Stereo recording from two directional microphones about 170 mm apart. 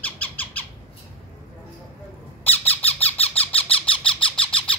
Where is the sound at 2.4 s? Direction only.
10° left (ahead or behind).